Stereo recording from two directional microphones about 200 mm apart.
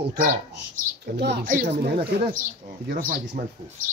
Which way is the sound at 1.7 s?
55° right (ahead or behind).